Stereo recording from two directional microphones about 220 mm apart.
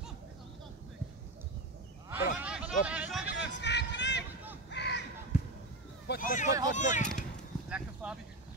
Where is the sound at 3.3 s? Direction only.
50° left (ahead or behind).